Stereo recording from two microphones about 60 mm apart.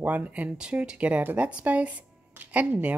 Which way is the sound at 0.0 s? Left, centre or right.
Right.